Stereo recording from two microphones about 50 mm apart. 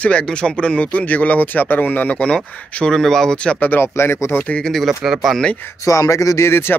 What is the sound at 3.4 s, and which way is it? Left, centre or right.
Speech, left.